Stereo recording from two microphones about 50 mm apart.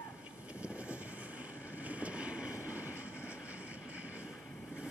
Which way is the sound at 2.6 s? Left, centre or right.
Right.